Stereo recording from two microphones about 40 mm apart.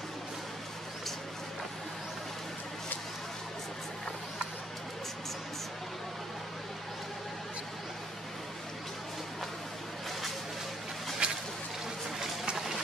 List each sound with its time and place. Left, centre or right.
11.2 s boat: right